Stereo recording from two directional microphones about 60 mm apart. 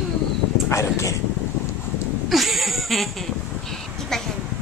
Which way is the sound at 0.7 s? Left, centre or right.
Left.